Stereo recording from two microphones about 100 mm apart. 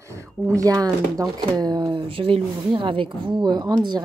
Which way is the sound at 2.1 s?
70° right (ahead or behind).